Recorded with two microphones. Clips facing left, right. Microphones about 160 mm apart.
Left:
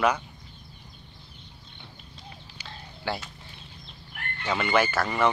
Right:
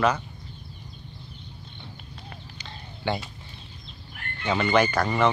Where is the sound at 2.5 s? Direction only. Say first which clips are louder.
Right 1 dB; centre (ahead or behind).